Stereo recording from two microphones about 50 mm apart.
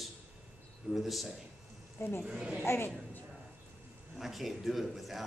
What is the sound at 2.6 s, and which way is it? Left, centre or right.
Speech, left.